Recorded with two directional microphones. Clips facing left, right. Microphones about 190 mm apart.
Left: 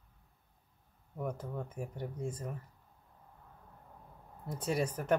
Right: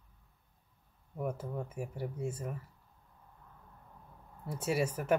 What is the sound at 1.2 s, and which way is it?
Speech, 10° right (ahead or behind).